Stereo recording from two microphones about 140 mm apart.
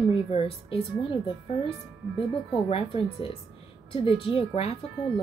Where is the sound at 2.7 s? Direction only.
40° left (ahead or behind).